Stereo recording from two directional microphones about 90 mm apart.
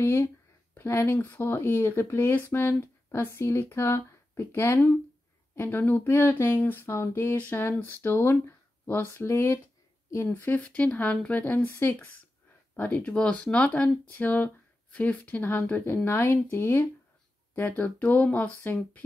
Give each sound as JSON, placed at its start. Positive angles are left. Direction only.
{"t": 0.0, "sound": "speech", "side_deg": 25}
{"t": 12.7, "sound": "speech", "side_deg": 20}